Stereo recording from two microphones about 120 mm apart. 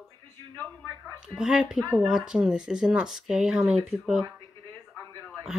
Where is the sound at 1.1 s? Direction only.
5° right (ahead or behind).